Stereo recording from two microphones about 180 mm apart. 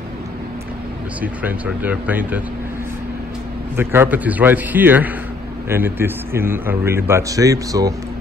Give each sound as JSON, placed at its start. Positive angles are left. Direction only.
{"t": 1.2, "sound": "a man's voice", "side_deg": -10}
{"t": 3.7, "sound": "a man's voice", "side_deg": -10}